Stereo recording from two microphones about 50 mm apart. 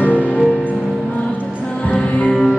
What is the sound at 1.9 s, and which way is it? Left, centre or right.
Music, left.